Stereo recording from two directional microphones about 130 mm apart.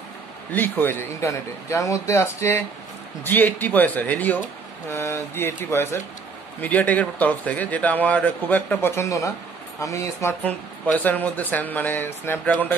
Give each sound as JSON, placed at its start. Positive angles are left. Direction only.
{"t": 0.5, "sound": "speech", "side_deg": 15}